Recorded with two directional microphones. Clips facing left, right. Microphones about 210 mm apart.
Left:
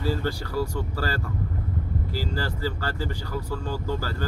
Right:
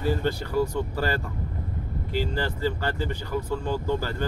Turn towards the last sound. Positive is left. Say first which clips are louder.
# right 3 dB
turn(degrees=-20)  # may be behind; listen again after turning